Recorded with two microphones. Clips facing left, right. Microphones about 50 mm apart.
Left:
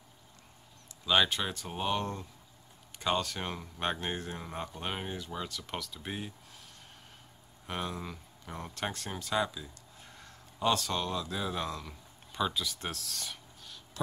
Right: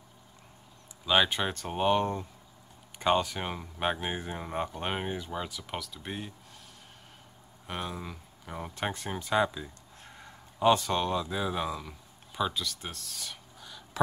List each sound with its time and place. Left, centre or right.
1.0 s speech: centre
7.6 s speech: centre